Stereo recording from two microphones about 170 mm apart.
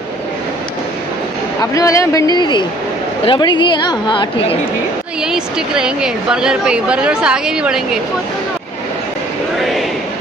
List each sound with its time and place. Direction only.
1.6 s a woman's voice: 20° left (ahead or behind)
5.2 s a woman's voice: 5° right (ahead or behind)
9.6 s a sound: centre (ahead or behind)